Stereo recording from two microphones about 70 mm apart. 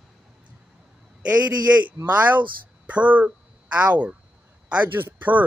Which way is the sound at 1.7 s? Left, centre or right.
Centre.